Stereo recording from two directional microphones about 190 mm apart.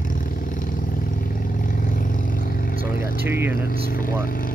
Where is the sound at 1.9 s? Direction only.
45° left (ahead or behind).